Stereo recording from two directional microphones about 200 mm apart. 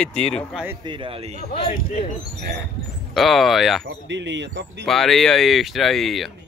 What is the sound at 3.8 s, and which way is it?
Speech, 65° right (ahead or behind).